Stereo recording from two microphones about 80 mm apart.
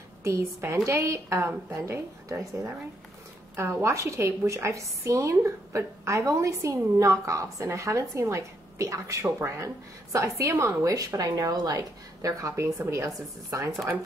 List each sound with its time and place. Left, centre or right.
0.2 s a woman's voice: right